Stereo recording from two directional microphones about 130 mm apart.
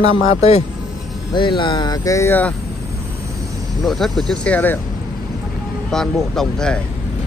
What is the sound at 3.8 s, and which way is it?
Speech, centre (ahead or behind).